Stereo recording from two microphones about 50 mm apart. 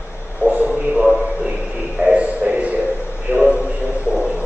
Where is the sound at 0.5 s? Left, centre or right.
Right.